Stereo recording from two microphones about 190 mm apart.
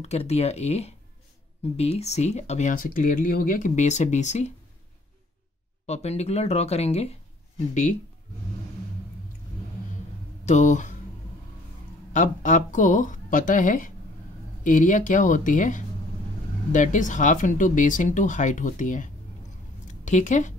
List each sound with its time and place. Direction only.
0.0 s speech: 35° left (ahead or behind)
5.9 s speech: 35° left (ahead or behind)
10.4 s speech: 40° left (ahead or behind)
12.1 s speech: 40° left (ahead or behind)